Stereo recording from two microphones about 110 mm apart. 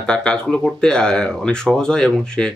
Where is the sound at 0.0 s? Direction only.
10° left (ahead or behind).